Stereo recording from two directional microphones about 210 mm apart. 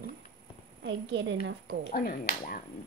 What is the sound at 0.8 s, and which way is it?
Speech, 60° right (ahead or behind).